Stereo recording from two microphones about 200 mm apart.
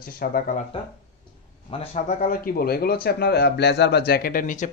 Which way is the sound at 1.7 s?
30° left (ahead or behind).